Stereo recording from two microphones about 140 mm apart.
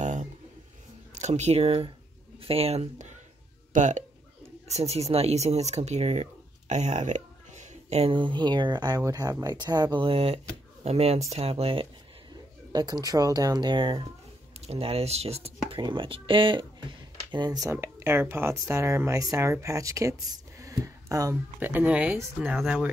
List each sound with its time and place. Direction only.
0.0 s a sound: 60° right (ahead or behind)
1.1 s speech: 55° right (ahead or behind)
4.6 s speech: 50° right (ahead or behind)
6.7 s a sound: 55° right (ahead or behind)
8.1 s speech: 35° right (ahead or behind)
12.7 s speech: 30° right (ahead or behind); by 15.8 s 45° right (ahead or behind)
15.8 s speech: 35° right (ahead or behind)
21.5 s speech: 10° right (ahead or behind)